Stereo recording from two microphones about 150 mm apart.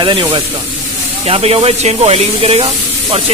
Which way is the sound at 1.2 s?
40° right (ahead or behind).